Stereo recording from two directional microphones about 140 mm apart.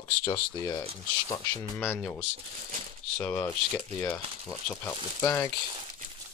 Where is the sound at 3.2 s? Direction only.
10° left (ahead or behind).